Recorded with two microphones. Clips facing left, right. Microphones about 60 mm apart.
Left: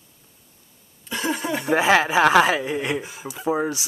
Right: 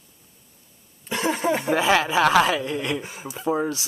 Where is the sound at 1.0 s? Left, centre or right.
Right.